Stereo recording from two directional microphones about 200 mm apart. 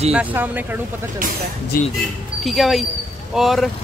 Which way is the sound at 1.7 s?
45° left (ahead or behind).